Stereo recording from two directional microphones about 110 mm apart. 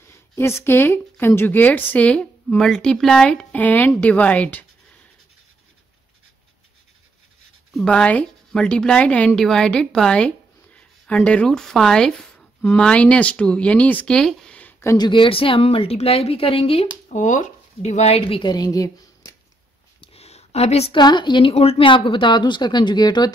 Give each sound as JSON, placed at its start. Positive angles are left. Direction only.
{"t": 0.1, "sound": "speech", "side_deg": 25}
{"t": 7.7, "sound": "a woman's voice", "side_deg": 10}
{"t": 15.0, "sound": "a woman's voice", "side_deg": 50}
{"t": 17.8, "sound": "a woman's voice", "side_deg": 90}
{"t": 18.4, "sound": "speech", "side_deg": 40}
{"t": 20.0, "sound": "a sound", "side_deg": 65}
{"t": 20.9, "sound": "a woman's voice", "side_deg": 45}